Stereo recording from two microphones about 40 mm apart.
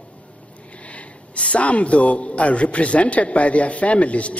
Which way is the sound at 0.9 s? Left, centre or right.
Left.